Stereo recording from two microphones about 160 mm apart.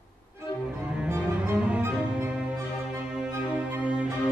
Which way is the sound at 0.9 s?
10° right (ahead or behind).